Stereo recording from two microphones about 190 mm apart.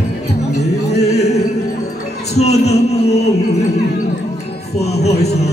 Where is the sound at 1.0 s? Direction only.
35° left (ahead or behind).